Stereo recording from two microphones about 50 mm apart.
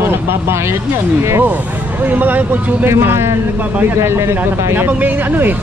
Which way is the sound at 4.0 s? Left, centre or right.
Right.